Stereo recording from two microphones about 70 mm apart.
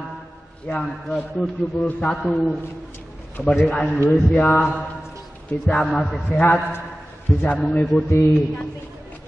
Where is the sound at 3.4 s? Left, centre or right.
Centre.